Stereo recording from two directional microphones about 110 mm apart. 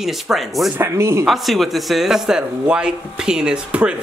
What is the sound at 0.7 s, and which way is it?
Speech, 25° right (ahead or behind).